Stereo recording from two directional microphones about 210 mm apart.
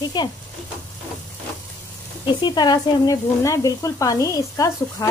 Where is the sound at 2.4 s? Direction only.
20° left (ahead or behind).